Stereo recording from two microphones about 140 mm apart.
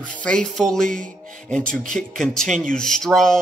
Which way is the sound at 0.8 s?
70° right (ahead or behind).